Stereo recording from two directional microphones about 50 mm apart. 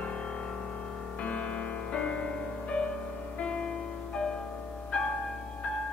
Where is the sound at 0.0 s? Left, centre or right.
Left.